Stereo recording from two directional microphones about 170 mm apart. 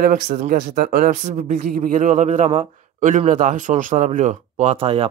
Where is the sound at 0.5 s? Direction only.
55° right (ahead or behind).